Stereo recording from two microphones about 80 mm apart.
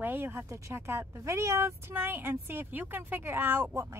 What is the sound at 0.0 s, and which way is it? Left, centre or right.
A woman's voice, right.